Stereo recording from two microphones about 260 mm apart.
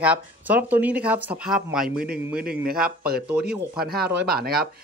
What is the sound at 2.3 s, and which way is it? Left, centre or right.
Speech, right.